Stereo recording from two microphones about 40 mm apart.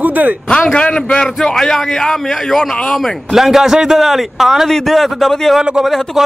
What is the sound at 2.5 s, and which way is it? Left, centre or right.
A man's voice, centre.